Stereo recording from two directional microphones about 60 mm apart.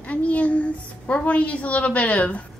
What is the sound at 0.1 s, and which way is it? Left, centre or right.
A woman's voice, left.